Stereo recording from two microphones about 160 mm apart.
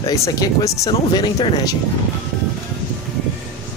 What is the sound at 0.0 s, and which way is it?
Speech, 20° left (ahead or behind).